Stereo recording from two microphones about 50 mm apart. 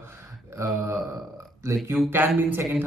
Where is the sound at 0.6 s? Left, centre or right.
Right.